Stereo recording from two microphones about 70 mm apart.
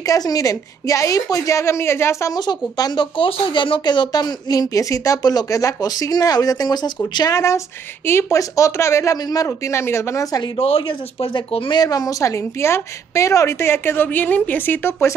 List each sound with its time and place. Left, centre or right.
0.0 s a woman's voice: left
2.3 s speech: left
7.2 s speech: left
8.0 s speech: left
8.3 s a woman's voice: left
9.1 s speech: left
9.5 s speech: left
11.7 s a woman's voice: left
14.0 s a woman's voice: left